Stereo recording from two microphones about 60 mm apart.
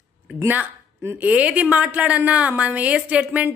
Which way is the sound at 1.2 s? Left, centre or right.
Right.